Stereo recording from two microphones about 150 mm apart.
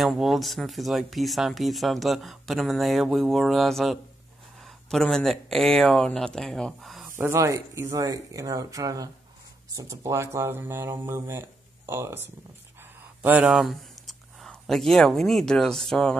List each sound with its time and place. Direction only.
0.0 s speech: centre (ahead or behind)
7.2 s speech: 20° right (ahead or behind)
13.2 s speech: 10° right (ahead or behind)